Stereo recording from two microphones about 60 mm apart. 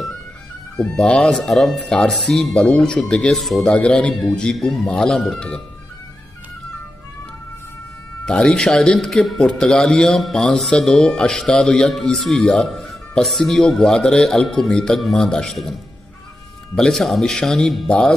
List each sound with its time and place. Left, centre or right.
0.7 s speech: centre
1.3 s speech: centre
2.5 s speech: centre
3.7 s speech: centre
8.3 s speech: centre
16.7 s speech: centre